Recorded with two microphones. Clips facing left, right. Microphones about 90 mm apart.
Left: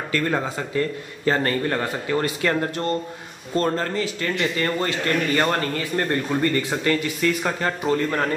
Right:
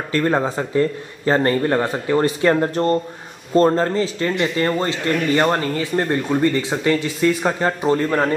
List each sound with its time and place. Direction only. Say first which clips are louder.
0.1 s a man's voice: right 5 dB; 30° right (ahead or behind)